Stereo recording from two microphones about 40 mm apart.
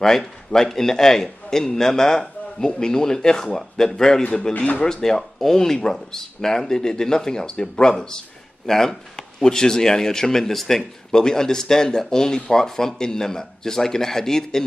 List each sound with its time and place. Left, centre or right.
0.0 s speech: centre
10.8 s speech: centre